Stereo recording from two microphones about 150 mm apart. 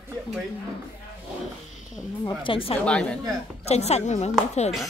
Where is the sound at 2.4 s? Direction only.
35° left (ahead or behind).